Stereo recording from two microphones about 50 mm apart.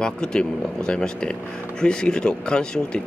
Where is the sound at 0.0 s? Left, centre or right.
Centre.